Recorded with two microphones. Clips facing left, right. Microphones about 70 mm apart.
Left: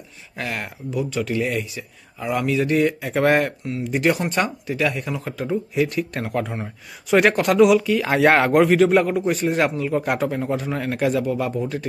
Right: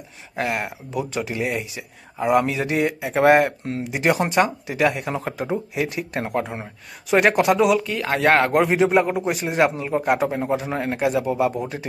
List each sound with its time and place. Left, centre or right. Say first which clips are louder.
0.4 s a man's voice: right 4 dB; right
5.5 s a man's voice: left 5 dB; centre
6.6 s speech: left 3 dB; centre
9.0 s a man's voice: left 2 dB; centre
9.8 s a man's voice: right 1 dB; right